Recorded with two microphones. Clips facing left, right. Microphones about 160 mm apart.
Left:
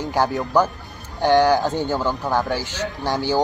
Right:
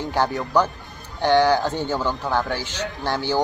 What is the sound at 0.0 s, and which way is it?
Speech, 10° left (ahead or behind).